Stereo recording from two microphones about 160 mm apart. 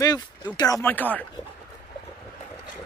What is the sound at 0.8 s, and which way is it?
Speech, 10° left (ahead or behind).